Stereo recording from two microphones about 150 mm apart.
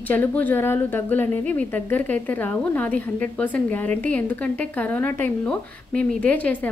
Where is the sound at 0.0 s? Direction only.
10° left (ahead or behind).